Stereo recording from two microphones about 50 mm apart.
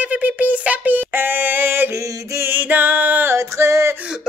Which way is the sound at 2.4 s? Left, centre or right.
Right.